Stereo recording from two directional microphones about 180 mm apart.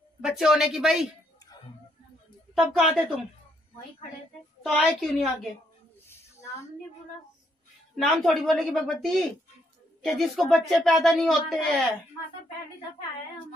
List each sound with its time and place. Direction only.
0.2 s speech: centre (ahead or behind)
2.6 s speech: 5° right (ahead or behind)
4.6 s speech: centre (ahead or behind)
6.0 s a sound: 15° left (ahead or behind)
7.9 s speech: centre (ahead or behind)